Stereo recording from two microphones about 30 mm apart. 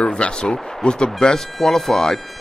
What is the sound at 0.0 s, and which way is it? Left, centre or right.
Speech, left.